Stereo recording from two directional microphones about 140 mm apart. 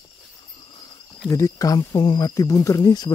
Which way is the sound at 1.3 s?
20° left (ahead or behind).